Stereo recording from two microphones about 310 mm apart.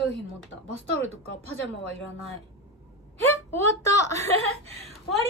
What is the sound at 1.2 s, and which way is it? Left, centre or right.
Speech, left.